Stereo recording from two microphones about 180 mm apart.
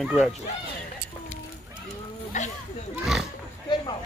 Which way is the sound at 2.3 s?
40° left (ahead or behind).